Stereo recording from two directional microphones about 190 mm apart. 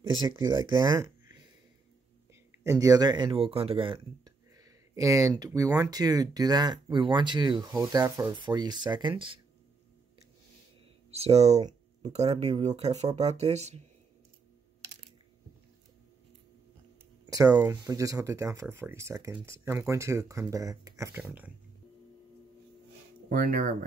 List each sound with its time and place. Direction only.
0.5 s speech: 25° right (ahead or behind)
2.6 s speech: 15° right (ahead or behind)
11.1 s speech: 35° right (ahead or behind)
17.3 s speech: 20° right (ahead or behind)
23.2 s speech: 50° right (ahead or behind)